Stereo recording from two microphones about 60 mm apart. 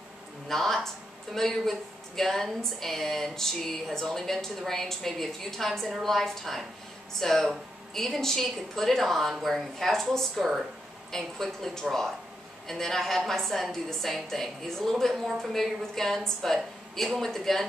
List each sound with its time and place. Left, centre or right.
0.5 s speech: centre